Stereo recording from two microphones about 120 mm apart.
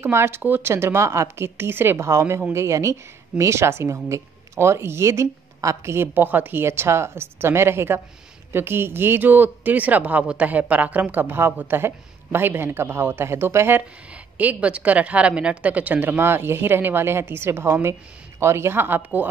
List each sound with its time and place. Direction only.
0.0 s a woman's voice: 20° right (ahead or behind)